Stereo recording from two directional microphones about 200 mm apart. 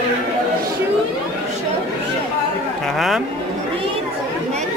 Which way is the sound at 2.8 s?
Centre (ahead or behind).